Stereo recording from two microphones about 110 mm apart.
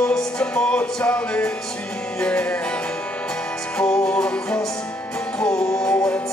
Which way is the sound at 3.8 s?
5° left (ahead or behind).